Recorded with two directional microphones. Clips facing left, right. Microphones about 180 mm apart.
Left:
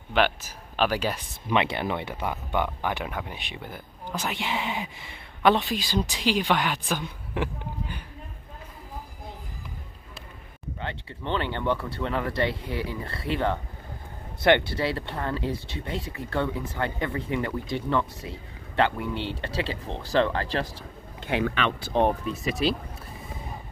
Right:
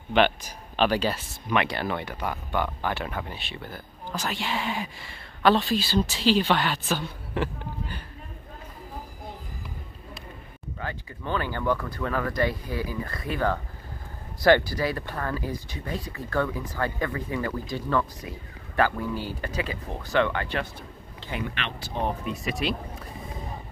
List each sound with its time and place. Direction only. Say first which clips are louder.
0.1 s speech: right 2 dB; 5° left (ahead or behind)
1.5 s speech: left 1 dB; 20° left (ahead or behind)
10.8 s speech: even; 25° left (ahead or behind)
21.3 s speech: left 6 dB; 90° left
21.9 s speech: left 5 dB; 35° left (ahead or behind)